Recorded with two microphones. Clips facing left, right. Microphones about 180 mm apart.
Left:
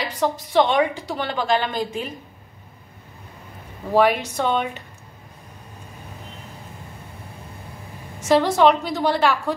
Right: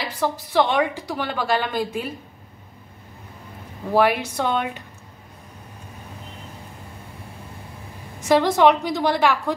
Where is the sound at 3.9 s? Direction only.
10° right (ahead or behind).